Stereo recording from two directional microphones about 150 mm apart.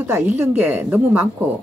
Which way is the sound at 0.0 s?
15° right (ahead or behind).